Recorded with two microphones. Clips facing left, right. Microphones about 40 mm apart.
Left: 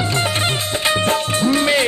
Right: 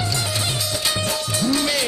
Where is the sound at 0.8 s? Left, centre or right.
Left.